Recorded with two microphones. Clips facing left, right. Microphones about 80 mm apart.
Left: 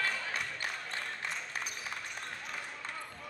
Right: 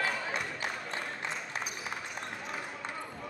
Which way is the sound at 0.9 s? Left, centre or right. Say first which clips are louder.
Right 2 dB; centre.